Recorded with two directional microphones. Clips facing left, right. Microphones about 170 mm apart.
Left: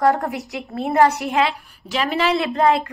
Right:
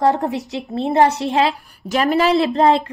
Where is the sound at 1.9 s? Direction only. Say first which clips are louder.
Right 5 dB; 45° right (ahead or behind); by 2.8 s 30° right (ahead or behind).